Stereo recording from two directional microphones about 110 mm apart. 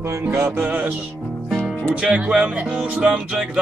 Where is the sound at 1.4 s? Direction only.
5° right (ahead or behind).